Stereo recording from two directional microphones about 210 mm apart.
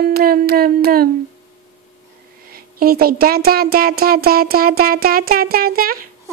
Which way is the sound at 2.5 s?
45° right (ahead or behind).